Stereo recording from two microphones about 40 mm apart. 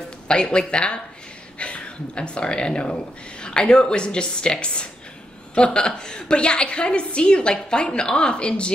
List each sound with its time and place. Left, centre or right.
0.3 s a woman's voice: left